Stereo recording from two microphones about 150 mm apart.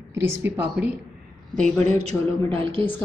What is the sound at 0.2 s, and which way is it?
Speech, 15° right (ahead or behind).